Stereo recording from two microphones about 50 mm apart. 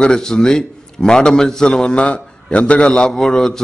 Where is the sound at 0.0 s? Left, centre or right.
Centre.